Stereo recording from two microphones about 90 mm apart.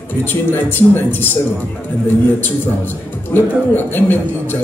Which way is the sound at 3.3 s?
25° left (ahead or behind).